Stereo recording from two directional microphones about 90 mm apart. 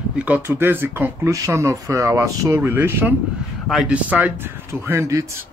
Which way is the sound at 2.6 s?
25° right (ahead or behind).